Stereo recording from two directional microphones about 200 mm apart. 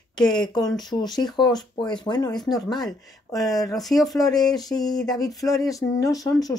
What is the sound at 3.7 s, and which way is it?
Speech, centre (ahead or behind).